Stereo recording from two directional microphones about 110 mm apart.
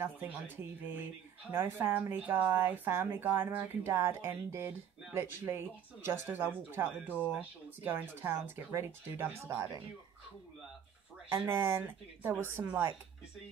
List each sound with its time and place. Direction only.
0.0 s speech: 20° right (ahead or behind)
11.2 s speech: 20° right (ahead or behind)